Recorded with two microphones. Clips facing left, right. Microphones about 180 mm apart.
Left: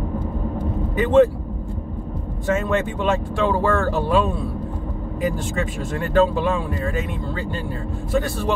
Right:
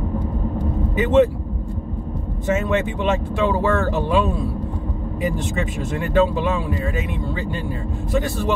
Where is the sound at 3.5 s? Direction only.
20° right (ahead or behind).